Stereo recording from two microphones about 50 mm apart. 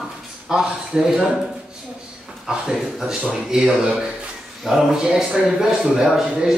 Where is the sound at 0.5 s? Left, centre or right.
Centre.